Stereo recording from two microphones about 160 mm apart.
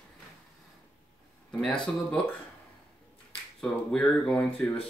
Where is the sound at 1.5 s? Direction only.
5° left (ahead or behind).